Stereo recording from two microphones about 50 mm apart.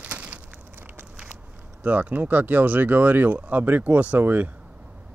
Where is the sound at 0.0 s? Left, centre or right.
Right.